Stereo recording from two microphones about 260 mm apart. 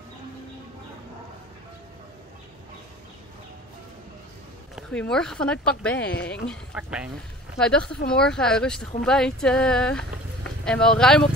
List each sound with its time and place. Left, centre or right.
4.7 s speech: centre
6.0 s speech: left
6.4 s speech: centre